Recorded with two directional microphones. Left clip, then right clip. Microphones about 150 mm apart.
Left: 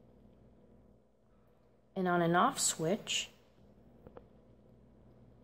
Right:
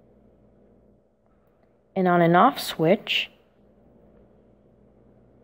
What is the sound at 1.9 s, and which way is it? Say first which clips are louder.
Speech: right 12 dB; 30° right (ahead or behind).